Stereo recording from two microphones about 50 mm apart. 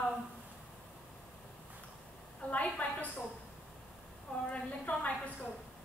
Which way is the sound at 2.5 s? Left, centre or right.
Left.